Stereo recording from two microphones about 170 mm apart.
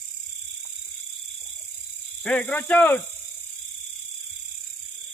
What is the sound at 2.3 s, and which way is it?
Speech, 5° left (ahead or behind).